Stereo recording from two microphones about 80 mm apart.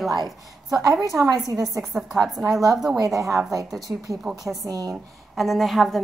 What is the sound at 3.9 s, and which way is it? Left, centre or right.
Speech, right.